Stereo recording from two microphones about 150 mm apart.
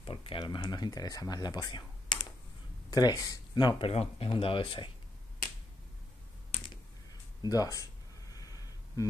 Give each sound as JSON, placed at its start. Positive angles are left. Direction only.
{"t": 0.0, "sound": "speech", "side_deg": 35}
{"t": 6.5, "sound": "computer keyboard", "side_deg": 35}
{"t": 7.4, "sound": "a sound", "side_deg": 25}